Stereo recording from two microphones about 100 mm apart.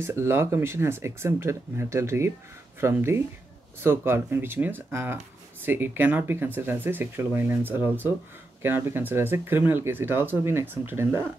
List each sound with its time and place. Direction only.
0.0 s speech: 25° right (ahead or behind)